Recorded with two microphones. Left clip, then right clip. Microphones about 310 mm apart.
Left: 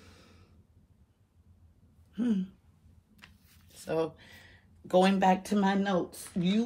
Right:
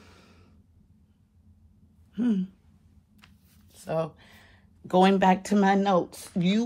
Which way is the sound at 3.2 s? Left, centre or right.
Centre.